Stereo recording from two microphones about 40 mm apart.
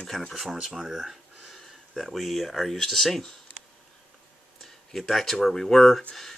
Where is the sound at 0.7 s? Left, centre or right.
Centre.